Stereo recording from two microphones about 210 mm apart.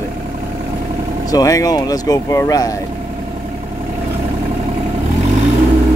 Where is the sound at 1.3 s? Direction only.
15° left (ahead or behind).